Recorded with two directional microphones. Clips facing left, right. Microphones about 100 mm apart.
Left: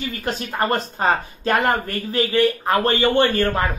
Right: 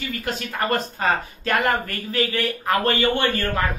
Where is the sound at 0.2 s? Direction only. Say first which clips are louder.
Left 4 dB; 30° left (ahead or behind).